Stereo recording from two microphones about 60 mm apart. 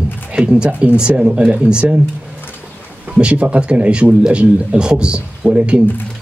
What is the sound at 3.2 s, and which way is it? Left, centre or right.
A man's voice, centre.